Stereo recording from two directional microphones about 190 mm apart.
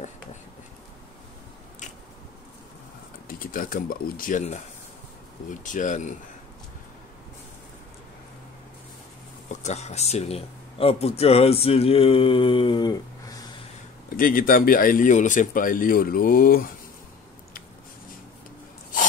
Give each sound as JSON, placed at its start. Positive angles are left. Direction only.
{"t": 3.3, "sound": "speech", "side_deg": 50}
{"t": 9.5, "sound": "speech", "side_deg": 35}
{"t": 14.1, "sound": "speech", "side_deg": 50}